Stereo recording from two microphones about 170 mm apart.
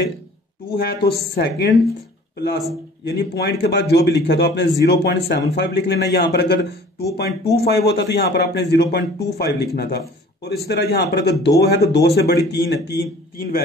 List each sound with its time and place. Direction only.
0.7 s a man's voice: 65° left (ahead or behind); by 3.8 s 90° left
3.9 s a man's voice: 75° left (ahead or behind); by 11.5 s 90° left
11.6 s a man's voice: 75° left (ahead or behind)